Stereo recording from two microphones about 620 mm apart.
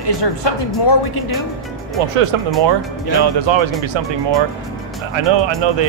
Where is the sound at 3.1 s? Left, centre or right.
Right.